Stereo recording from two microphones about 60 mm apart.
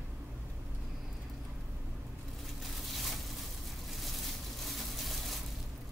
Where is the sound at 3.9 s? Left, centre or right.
Centre.